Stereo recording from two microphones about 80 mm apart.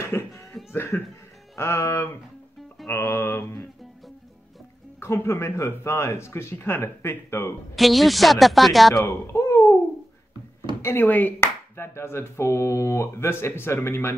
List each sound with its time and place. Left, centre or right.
0.0 s cough: left
0.5 s cough: centre
0.7 s laughter: left
1.6 s a sound: left
2.9 s music: left
5.0 s a sound: left
7.7 s speech: centre
9.0 s speech: left
10.8 s music: left
11.3 s a sound: left